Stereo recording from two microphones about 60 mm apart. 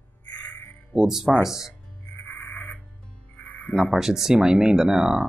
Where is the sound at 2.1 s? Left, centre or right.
Left.